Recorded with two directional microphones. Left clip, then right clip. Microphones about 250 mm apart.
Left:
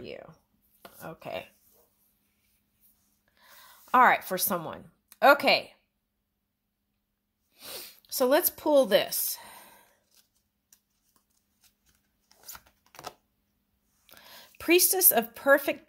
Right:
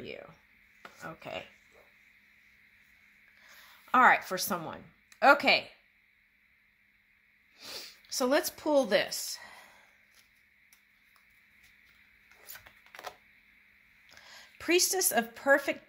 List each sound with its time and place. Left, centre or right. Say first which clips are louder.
0.8 s speech: left 2 dB; left
3.4 s a woman's voice: left 1 dB; left
7.5 s speech: even; left
14.0 s speech: left 1 dB; left